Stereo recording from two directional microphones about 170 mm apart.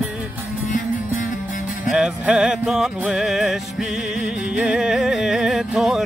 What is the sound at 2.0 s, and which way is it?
Music, 5° right (ahead or behind).